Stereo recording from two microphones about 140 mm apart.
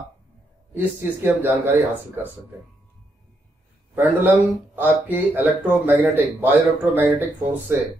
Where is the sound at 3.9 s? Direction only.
15° right (ahead or behind).